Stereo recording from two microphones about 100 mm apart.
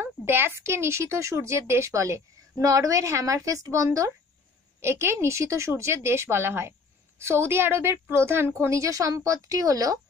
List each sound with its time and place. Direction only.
0.0 s a woman's voice: 25° right (ahead or behind)